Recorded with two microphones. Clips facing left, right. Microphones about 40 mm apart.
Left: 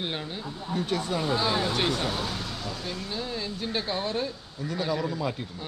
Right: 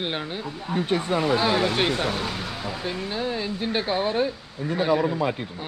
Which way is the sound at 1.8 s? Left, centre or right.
Right.